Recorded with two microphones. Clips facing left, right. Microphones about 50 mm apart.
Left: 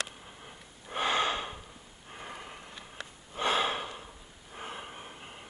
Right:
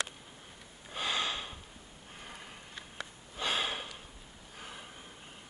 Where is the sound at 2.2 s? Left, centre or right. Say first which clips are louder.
Left 5 dB; left.